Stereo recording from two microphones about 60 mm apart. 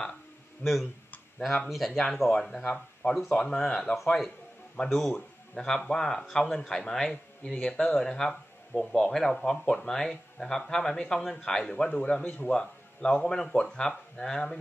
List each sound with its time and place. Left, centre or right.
0.6 s speech: left
1.7 s speech: centre
2.6 s a man's voice: centre